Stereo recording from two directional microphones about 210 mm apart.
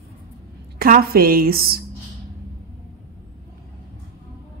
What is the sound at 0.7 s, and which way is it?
A woman's voice, 45° right (ahead or behind).